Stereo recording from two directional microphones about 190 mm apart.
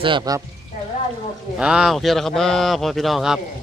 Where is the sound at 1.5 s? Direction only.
5° right (ahead or behind).